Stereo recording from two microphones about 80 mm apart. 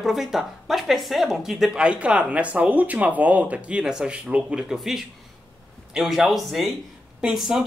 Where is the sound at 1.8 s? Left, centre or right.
Centre.